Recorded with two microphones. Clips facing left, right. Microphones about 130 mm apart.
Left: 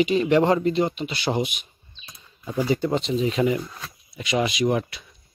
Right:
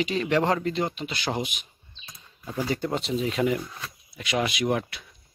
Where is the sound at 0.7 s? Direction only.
5° left (ahead or behind).